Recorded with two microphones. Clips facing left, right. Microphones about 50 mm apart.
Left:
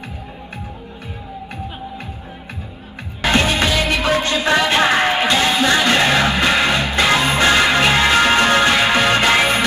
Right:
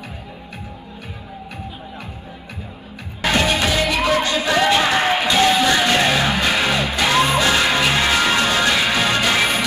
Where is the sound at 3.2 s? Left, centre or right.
Left.